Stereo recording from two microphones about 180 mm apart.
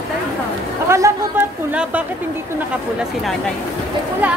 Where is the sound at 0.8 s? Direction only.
15° right (ahead or behind).